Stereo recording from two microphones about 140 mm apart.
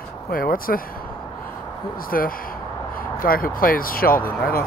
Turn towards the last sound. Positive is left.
turn(degrees=90)